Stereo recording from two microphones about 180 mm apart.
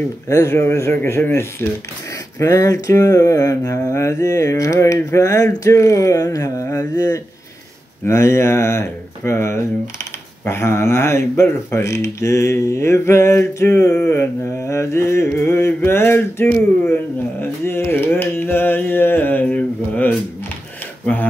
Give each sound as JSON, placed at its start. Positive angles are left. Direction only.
{"t": 0.3, "sound": "speech", "side_deg": 15}
{"t": 2.3, "sound": "mantra", "side_deg": 20}
{"t": 8.1, "sound": "speech", "side_deg": 15}